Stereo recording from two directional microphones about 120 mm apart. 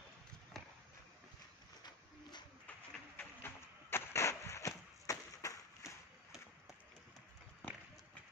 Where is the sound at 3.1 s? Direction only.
20° left (ahead or behind).